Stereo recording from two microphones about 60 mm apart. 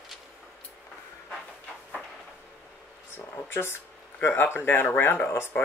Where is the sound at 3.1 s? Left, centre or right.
Left.